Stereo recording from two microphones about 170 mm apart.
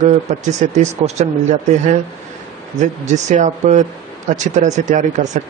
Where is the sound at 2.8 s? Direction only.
45° right (ahead or behind).